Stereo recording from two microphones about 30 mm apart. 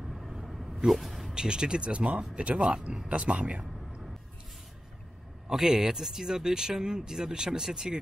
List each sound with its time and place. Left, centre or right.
0.0 s a sound: centre
1.0 s vehicle: centre
1.3 s speech: right
3.1 s speech: right
5.5 s speech: centre